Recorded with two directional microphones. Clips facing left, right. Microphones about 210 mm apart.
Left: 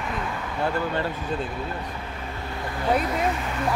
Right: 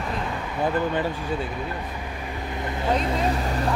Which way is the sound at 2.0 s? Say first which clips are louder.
Right 2 dB; 15° right (ahead or behind).